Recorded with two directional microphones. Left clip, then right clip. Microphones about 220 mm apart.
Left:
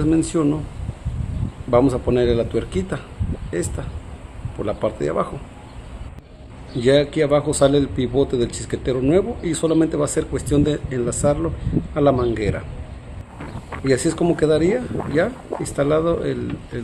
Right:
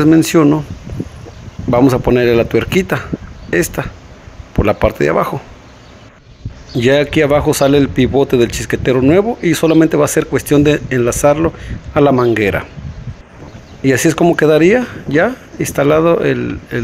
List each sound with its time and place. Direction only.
0.3 s speech: 25° right (ahead or behind)
1.7 s speech: 25° right (ahead or behind)
4.6 s speech: 25° right (ahead or behind)
6.8 s speech: 20° right (ahead or behind)
13.8 s speech: 20° right (ahead or behind)